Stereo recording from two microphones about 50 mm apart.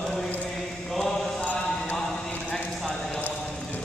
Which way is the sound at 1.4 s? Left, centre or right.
Left.